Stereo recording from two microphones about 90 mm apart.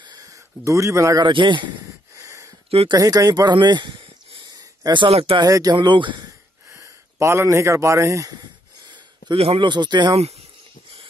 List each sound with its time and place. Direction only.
0.0 s a sound: 50° right (ahead or behind)
0.3 s speech: 35° right (ahead or behind)
1.2 s speech: 60° right (ahead or behind)
2.1 s a sound: 35° right (ahead or behind)
2.9 s speech: 45° right (ahead or behind); by 4.4 s 65° right (ahead or behind)
4.9 s speech: 80° right
5.4 s speech: 45° right (ahead or behind)
5.8 s speech: 65° right (ahead or behind)
6.7 s speech: 35° right (ahead or behind)
9.3 s speech: 80° right; by 10.1 s 55° right (ahead or behind)